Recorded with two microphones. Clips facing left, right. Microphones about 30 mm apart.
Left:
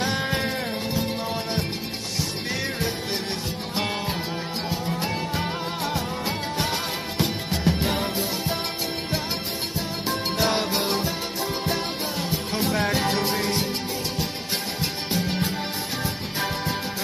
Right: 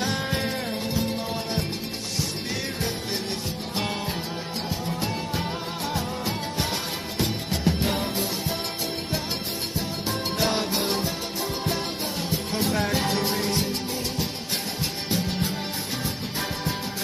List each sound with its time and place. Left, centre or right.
0.1 s music: centre
5.9 s music: centre
10.2 s music: centre
13.0 s music: centre